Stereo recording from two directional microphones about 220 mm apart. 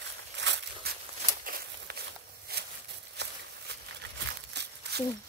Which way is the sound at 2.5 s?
45° right (ahead or behind).